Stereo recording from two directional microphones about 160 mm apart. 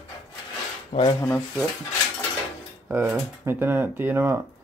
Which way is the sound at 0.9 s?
45° left (ahead or behind).